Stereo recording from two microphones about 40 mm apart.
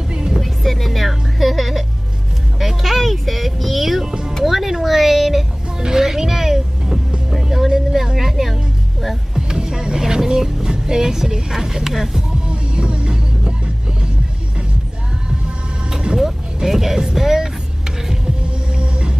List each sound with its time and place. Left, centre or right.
0.1 s music: centre
0.4 s speech: centre
4.5 s a sound: centre
5.8 s music: centre
9.3 s vehicle: centre
12.4 s music: right
15.2 s music: right
16.5 s music: centre
18.4 s hum: right